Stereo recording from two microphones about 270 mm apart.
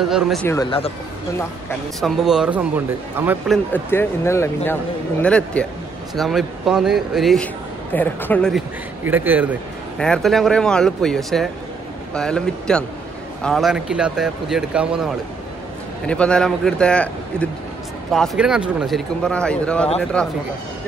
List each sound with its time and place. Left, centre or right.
0.1 s speech: centre
2.0 s speech: centre